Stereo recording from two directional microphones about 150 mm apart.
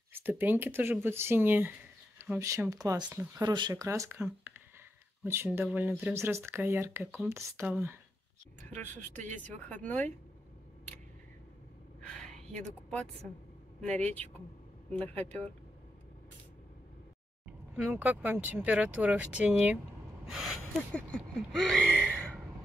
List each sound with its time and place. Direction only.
0.1 s speech: 10° right (ahead or behind)
3.4 s speech: 25° right (ahead or behind)
4.2 s a sound: 15° right (ahead or behind)
5.2 s speech: 15° right (ahead or behind)
8.6 s speech: 10° left (ahead or behind)
12.0 s a sound: 5° left (ahead or behind)
13.7 s speech: 5° left (ahead or behind)
17.5 s speech: 10° right (ahead or behind)
20.2 s a sound: centre (ahead or behind)